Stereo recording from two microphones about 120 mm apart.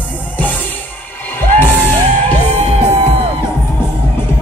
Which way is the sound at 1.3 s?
20° left (ahead or behind).